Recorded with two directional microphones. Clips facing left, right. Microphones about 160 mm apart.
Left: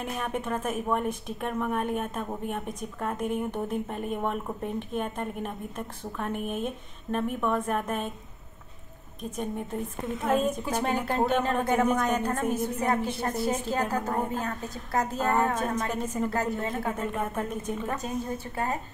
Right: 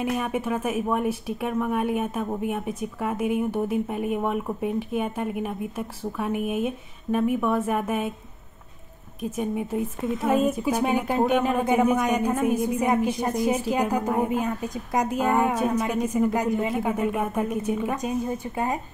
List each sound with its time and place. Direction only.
0.0 s a woman's voice: 5° right (ahead or behind)
9.4 s a woman's voice: 5° right (ahead or behind)